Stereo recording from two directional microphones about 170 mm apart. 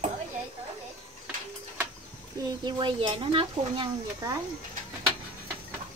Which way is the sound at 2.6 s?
30° right (ahead or behind).